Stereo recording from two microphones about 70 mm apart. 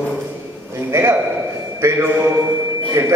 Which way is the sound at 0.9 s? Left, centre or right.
Right.